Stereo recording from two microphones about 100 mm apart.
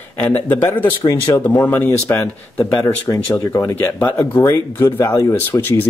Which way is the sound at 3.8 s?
15° left (ahead or behind).